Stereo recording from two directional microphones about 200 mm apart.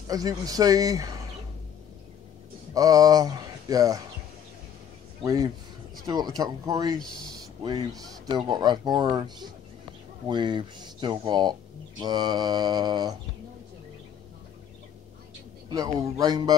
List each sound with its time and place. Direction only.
0.1 s speech: 20° right (ahead or behind)
2.7 s speech: 20° right (ahead or behind)
5.2 s speech: 15° right (ahead or behind)
15.7 s speech: 20° right (ahead or behind)